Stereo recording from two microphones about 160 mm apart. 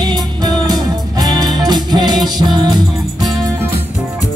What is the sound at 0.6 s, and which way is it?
Music, 25° right (ahead or behind).